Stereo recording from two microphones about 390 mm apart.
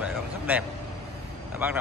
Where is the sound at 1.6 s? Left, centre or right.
Centre.